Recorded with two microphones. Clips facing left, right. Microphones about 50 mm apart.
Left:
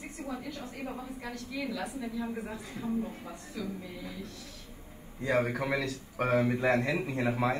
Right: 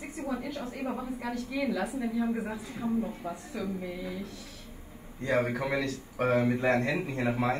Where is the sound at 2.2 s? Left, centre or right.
Right.